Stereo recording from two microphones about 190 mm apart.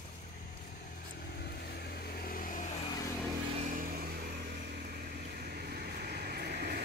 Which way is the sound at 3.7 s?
45° right (ahead or behind).